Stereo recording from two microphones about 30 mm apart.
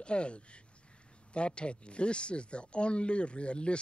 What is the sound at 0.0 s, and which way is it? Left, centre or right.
Speech, left.